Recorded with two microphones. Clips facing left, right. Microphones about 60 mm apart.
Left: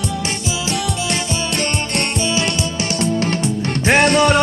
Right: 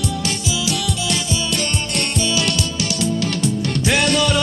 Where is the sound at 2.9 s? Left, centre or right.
Left.